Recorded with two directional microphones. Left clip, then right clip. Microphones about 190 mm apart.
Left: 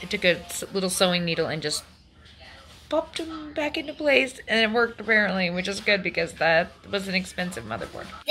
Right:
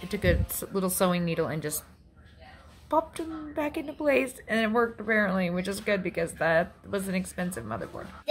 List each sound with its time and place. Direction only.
0.0 s speech: 20° right (ahead or behind)
2.9 s speech: 15° right (ahead or behind)